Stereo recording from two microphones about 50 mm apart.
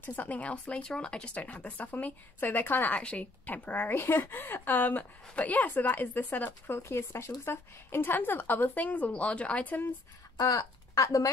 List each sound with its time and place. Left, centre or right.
0.0 s a woman's voice: left
2.9 s a woman's voice: left
6.7 s speech: left
8.8 s speech: left